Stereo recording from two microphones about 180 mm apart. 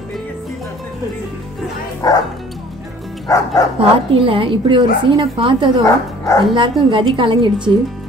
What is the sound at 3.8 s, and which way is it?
A woman's voice, 30° right (ahead or behind).